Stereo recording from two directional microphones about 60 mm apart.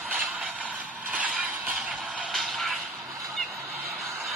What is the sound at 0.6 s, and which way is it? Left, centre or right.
Vehicle, right.